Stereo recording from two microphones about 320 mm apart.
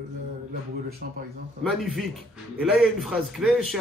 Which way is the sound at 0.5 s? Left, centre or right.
Right.